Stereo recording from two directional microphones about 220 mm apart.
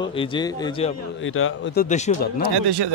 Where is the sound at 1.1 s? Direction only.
65° left (ahead or behind).